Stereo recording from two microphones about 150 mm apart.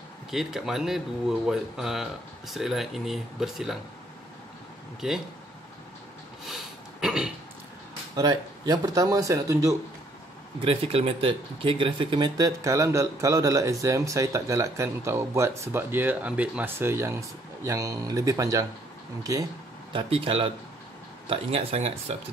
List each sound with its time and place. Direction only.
0.3 s speech: centre (ahead or behind)
5.0 s speech: centre (ahead or behind)
6.4 s a sound: 5° right (ahead or behind)
8.2 s speech: 25° right (ahead or behind)
10.6 s speech: 40° right (ahead or behind); by 19.4 s 20° right (ahead or behind)
19.9 s speech: 35° right (ahead or behind)